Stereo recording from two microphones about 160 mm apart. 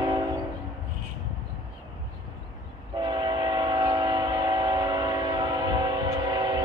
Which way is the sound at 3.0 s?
30° right (ahead or behind).